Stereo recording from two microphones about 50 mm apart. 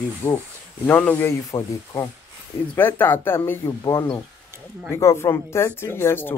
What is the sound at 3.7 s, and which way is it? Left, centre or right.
Speech, left.